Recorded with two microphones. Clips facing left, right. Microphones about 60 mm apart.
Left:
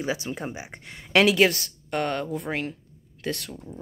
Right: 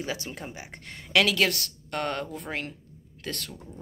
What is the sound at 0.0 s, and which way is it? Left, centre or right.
Speech, centre.